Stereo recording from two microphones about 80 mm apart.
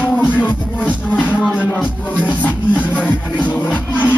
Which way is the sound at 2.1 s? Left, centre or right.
Centre.